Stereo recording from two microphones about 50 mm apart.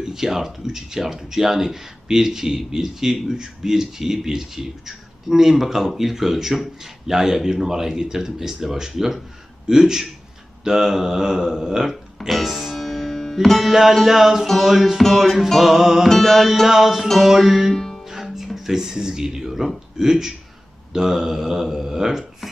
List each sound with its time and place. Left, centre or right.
0.0 s speech: centre
12.3 s music: centre
13.7 s speech: centre
14.4 s music: centre
17.7 s music: centre
18.0 s speech: centre